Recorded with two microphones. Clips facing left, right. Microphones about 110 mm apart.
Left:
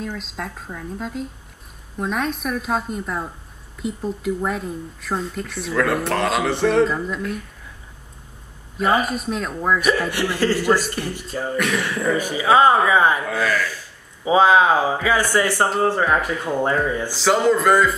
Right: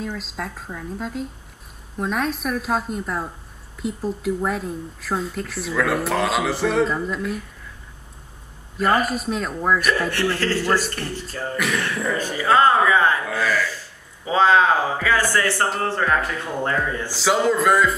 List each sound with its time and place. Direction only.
0.0 s speech: centre (ahead or behind)
8.7 s speech: centre (ahead or behind)
10.1 s a man's voice: 15° left (ahead or behind)
11.5 s speech: centre (ahead or behind)
12.2 s a man's voice: 10° left (ahead or behind)
13.3 s speech: centre (ahead or behind)
14.2 s a man's voice: 15° left (ahead or behind)
17.1 s speech: centre (ahead or behind)